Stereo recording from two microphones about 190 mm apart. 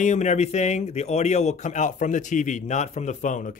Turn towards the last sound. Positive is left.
turn(degrees=40)  # may be behind; listen again after turning